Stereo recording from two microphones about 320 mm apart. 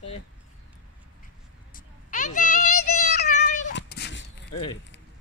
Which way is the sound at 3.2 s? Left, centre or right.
Left.